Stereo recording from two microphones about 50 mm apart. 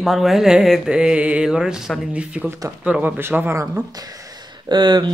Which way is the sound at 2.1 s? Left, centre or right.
Right.